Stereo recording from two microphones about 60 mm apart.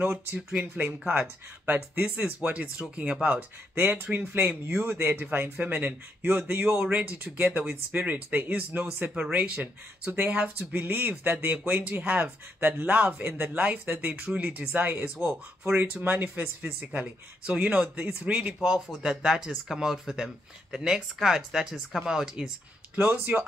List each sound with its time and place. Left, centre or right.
0.0 s speech: right
2.0 s speech: right
12.5 s speech: right
12.8 s speech: right; by 22.5 s centre
23.0 s speech: right